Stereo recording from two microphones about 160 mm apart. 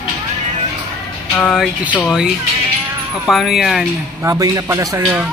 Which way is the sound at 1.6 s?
10° right (ahead or behind).